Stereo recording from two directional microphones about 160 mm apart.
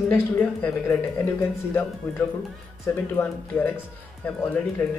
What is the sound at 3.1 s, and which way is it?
Speech, 10° left (ahead or behind).